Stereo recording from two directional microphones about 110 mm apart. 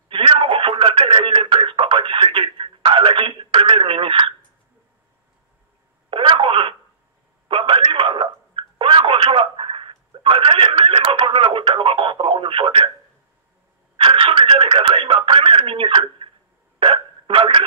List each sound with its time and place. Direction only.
0.1 s radio: 55° right (ahead or behind)
6.0 s telephone: 50° right (ahead or behind)
13.9 s radio: 55° right (ahead or behind)
16.8 s hiccup: 50° right (ahead or behind)